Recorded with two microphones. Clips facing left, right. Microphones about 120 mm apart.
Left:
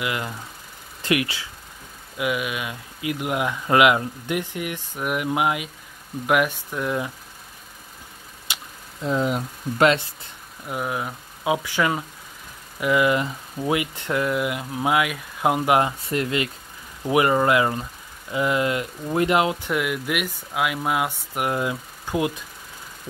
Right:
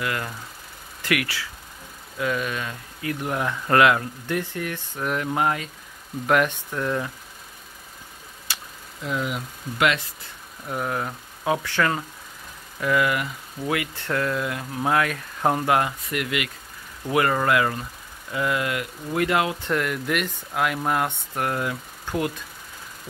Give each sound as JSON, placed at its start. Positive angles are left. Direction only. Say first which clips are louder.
{"t": 0.0, "sound": "speech", "louder": "left 1 dB", "side_deg": 15}
{"t": 8.5, "sound": "vehicle", "louder": "left 1 dB", "side_deg": 15}
{"t": 9.0, "sound": "speech", "louder": "left 5 dB", "side_deg": 35}
{"t": 10.7, "sound": "speech", "louder": "even", "side_deg": 5}
{"t": 16.0, "sound": "speech", "louder": "left 3 dB", "side_deg": 30}
{"t": 17.0, "sound": "speech", "louder": "left 3 dB", "side_deg": 20}
{"t": 19.7, "sound": "speech", "louder": "even", "side_deg": 5}
{"t": 21.4, "sound": "speech", "louder": "left 2 dB", "side_deg": 20}